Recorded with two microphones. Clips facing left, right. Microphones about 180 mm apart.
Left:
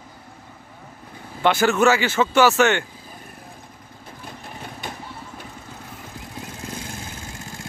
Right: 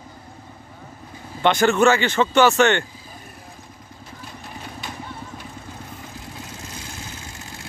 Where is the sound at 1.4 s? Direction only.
5° left (ahead or behind).